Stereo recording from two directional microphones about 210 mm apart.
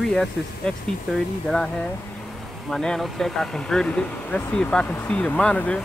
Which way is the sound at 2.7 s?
Centre (ahead or behind).